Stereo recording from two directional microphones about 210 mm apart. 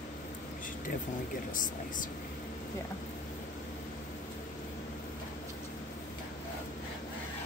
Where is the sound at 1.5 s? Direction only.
40° left (ahead or behind).